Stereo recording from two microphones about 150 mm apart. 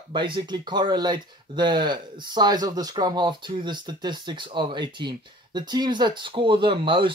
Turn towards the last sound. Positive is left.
turn(degrees=-35)  # may be behind; listen again after turning